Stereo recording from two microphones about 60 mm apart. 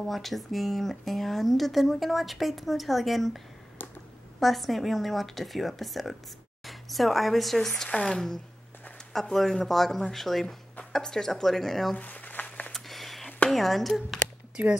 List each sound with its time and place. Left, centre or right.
0.0 s speech: centre
12.0 s crumpling: left
12.7 s a sound: centre
13.5 s speech: centre
14.6 s speech: right